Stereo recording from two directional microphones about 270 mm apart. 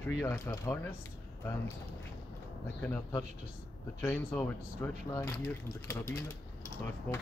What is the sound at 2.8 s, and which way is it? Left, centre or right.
Speech, centre.